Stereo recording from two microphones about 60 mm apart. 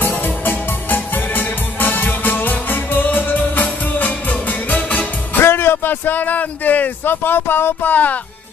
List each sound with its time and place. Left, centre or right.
0.0 s music: left
5.4 s speech: left